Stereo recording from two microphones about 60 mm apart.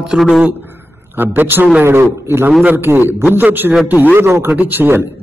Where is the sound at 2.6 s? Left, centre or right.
Right.